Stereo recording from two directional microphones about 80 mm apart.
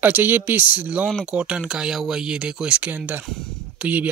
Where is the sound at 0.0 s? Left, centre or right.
Right.